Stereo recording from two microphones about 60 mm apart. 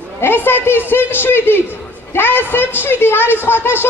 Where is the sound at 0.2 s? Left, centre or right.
Left.